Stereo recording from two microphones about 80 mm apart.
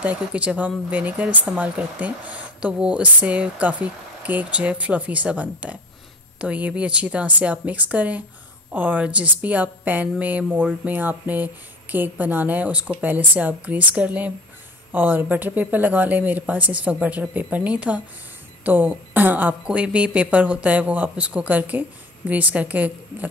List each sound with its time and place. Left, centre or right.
0.0 s a woman's voice: centre